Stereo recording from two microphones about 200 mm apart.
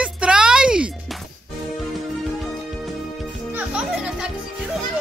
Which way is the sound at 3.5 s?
5° right (ahead or behind).